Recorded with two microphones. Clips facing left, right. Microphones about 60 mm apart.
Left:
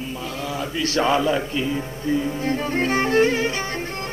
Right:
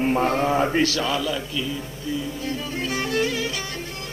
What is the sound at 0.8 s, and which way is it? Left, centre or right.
A man's voice, left.